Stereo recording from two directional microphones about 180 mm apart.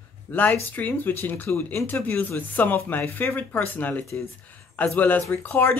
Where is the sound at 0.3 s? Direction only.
10° left (ahead or behind).